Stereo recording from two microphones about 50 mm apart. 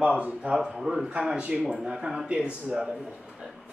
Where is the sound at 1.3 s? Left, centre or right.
Centre.